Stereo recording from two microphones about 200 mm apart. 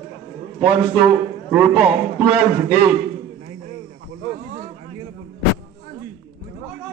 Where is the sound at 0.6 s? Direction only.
5° right (ahead or behind).